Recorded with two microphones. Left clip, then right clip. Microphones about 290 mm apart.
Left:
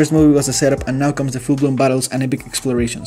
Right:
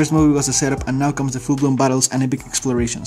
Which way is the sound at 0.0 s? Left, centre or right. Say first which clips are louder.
Left 3 dB; centre.